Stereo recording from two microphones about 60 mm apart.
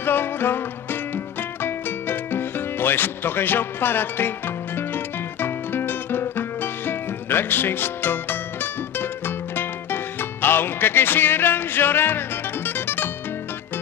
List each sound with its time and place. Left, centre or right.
0.0 s music: left